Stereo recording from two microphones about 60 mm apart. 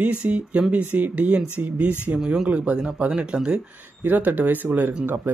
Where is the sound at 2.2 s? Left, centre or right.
Centre.